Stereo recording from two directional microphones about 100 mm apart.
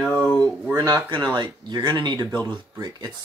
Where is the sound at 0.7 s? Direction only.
30° right (ahead or behind).